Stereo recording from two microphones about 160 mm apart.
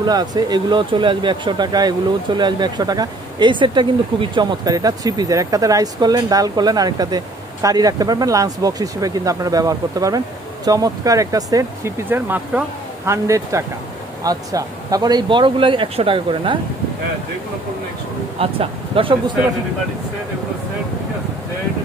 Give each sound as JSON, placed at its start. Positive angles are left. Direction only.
{"t": 0.0, "sound": "speech", "side_deg": -25}
{"t": 18.4, "sound": "speech", "side_deg": -35}